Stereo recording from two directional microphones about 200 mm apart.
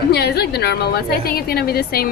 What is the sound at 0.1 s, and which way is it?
A woman's voice, 55° left (ahead or behind).